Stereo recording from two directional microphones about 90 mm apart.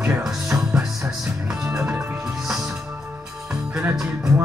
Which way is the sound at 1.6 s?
15° right (ahead or behind).